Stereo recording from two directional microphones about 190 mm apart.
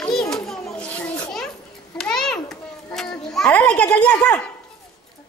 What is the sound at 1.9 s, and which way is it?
A child's voice, 5° left (ahead or behind).